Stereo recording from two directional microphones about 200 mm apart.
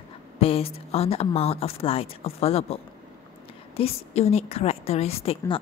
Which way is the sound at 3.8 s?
30° left (ahead or behind).